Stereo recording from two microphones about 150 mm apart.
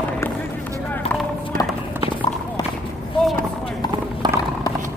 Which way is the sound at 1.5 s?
70° right (ahead or behind).